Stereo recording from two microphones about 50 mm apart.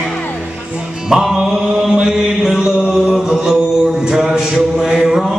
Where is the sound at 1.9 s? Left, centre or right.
Centre.